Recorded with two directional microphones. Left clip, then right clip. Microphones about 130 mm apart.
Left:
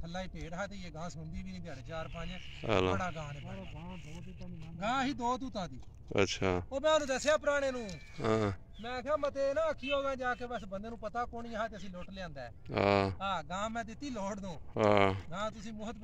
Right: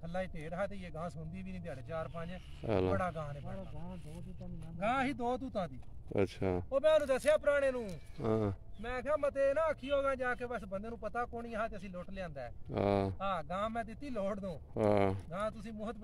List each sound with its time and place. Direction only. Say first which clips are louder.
0.1 s speech: right 3 dB; 60° right (ahead or behind)
1.7 s speech: right 2 dB; 15° right (ahead or behind)
3.1 s speech: right 1 dB; 30° right (ahead or behind)
4.7 s speech: even; 60° right (ahead or behind)
6.1 s speech: left 3 dB; 5° right (ahead or behind)
6.7 s a man's voice: right 3 dB; 90° right
8.2 s speech: left 3 dB; 5° right (ahead or behind)
8.8 s speech: even; 60° right (ahead or behind)
12.7 s speech: left 4 dB; centre (ahead or behind)
13.2 s speech: even; 65° right (ahead or behind)
14.8 s speech: left 4 dB; 5° right (ahead or behind)
15.3 s speech: even; 60° right (ahead or behind)